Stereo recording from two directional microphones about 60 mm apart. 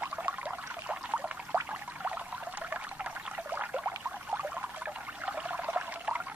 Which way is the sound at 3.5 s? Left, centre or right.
Right.